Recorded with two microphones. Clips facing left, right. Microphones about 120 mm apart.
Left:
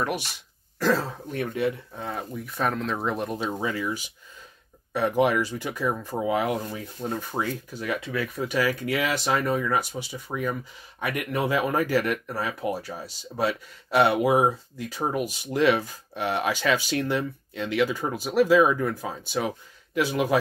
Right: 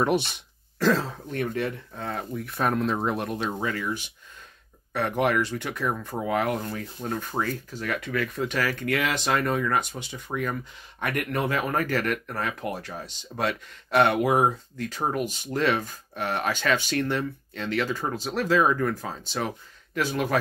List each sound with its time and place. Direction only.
0.0 s speech: 25° right (ahead or behind)
0.7 s speech: 5° left (ahead or behind)
3.4 s speech: 15° left (ahead or behind)
4.9 s speech: 15° left (ahead or behind)